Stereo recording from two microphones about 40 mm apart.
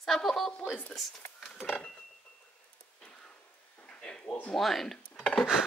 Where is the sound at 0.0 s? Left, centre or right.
Centre.